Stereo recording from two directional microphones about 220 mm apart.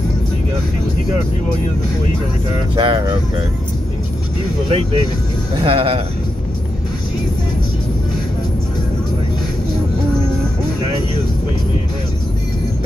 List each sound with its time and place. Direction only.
2.7 s speech: 20° right (ahead or behind)
4.6 s speech: 25° right (ahead or behind)